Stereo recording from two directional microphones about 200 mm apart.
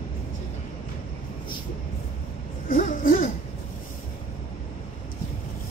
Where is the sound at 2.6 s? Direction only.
40° left (ahead or behind).